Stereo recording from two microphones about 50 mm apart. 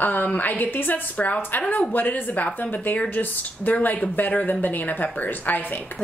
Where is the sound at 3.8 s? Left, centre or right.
Left.